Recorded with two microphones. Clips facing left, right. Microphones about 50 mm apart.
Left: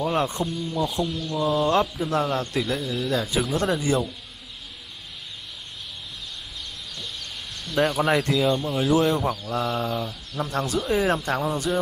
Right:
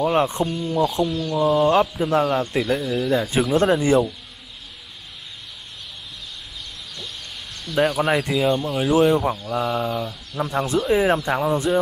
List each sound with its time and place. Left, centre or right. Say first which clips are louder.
0.0 s speech: right 5 dB; right
7.6 s speech: right 2 dB; centre
10.3 s speech: right 4 dB; right